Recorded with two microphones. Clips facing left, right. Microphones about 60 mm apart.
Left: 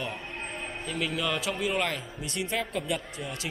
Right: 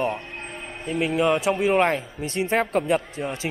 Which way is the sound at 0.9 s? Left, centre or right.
Right.